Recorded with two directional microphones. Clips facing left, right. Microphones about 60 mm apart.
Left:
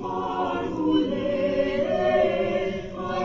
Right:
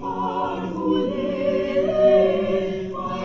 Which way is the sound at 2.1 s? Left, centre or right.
Left.